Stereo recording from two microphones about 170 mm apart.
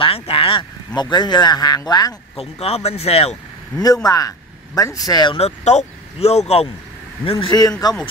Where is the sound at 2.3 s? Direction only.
35° left (ahead or behind).